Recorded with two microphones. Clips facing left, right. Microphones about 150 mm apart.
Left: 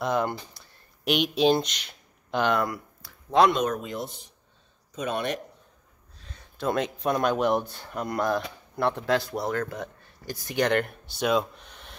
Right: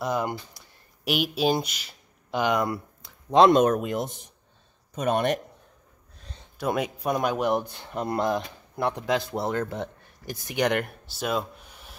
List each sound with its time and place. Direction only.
0.0 s speech: 5° right (ahead or behind)
2.7 s a sound: 20° right (ahead or behind)
3.5 s speech: 50° right (ahead or behind)
6.6 s speech: 10° right (ahead or behind)
7.7 s speech: 20° right (ahead or behind)